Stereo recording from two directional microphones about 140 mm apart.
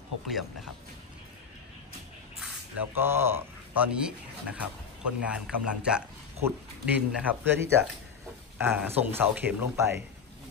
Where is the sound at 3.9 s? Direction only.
5° right (ahead or behind).